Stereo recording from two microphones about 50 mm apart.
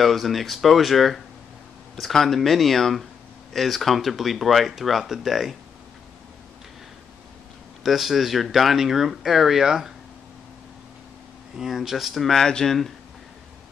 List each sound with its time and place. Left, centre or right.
0.0 s speech: centre
7.8 s speech: centre
11.5 s speech: centre
12.3 s speech: centre